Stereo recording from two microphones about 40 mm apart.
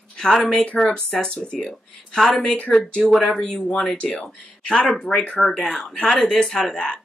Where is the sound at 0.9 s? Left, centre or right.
Centre.